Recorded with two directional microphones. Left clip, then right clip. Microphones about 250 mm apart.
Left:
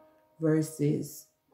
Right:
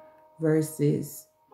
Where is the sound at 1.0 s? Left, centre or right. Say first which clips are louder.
Right 2 dB; centre.